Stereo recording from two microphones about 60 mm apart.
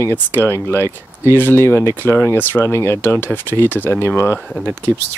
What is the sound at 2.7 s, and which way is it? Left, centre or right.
Speech, left.